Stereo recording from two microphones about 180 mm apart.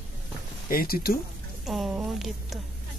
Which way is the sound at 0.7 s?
55° left (ahead or behind).